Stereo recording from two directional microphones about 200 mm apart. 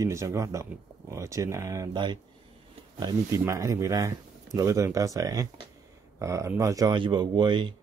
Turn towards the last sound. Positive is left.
turn(degrees=-25)  # may be behind; listen again after turning